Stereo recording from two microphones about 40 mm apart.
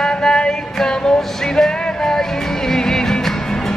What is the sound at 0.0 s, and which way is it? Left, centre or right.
Music, centre.